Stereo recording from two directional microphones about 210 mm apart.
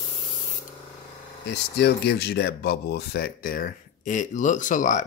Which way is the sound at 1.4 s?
55° left (ahead or behind).